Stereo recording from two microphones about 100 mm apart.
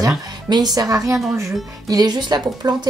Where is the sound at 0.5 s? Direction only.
40° right (ahead or behind).